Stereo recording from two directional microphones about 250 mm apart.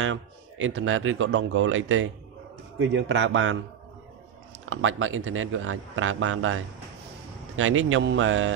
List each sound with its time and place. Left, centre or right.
0.0 s a man's voice: right
4.6 s a man's voice: right